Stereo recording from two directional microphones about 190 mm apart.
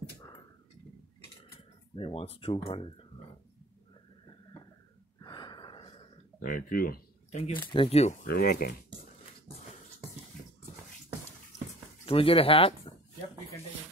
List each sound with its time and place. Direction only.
2.0 s speech: 30° left (ahead or behind)
5.2 s gasp: 25° left (ahead or behind)
6.4 s speech: 50° left (ahead or behind)
7.3 s speech: 35° left (ahead or behind)
10.3 s a sound: 5° left (ahead or behind)
12.1 s speech: 30° left (ahead or behind)